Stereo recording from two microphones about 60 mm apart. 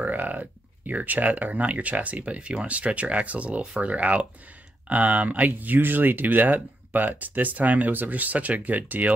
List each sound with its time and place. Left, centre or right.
0.0 s speech: right